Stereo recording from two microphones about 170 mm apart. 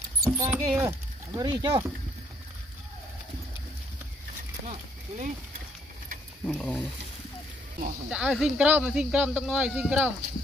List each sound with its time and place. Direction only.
0.2 s speech: 10° right (ahead or behind)
4.6 s speech: 50° right (ahead or behind)
6.4 s speech: 5° left (ahead or behind)
8.1 s speech: 5° right (ahead or behind)